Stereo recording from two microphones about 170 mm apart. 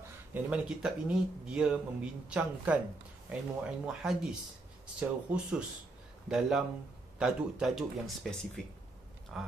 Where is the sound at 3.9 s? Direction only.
5° right (ahead or behind).